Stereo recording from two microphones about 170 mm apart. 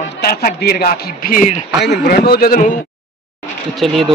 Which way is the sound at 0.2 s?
60° left (ahead or behind).